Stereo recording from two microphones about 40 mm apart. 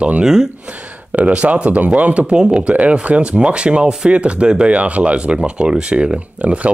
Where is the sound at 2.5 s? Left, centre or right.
Right.